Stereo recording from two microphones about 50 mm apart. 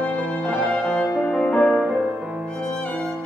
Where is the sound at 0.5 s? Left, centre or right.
Left.